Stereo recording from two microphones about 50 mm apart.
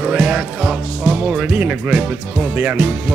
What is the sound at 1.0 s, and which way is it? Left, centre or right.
Speech, right.